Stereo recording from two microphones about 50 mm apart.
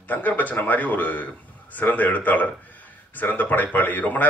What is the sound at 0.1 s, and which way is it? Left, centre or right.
Speech, left.